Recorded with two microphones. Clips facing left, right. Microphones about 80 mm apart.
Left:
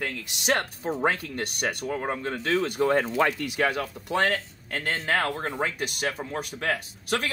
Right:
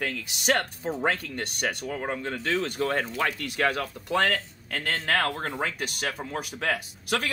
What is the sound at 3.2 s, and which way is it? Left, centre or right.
Speech, left.